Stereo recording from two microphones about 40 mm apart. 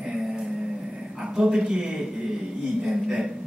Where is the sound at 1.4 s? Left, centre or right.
Centre.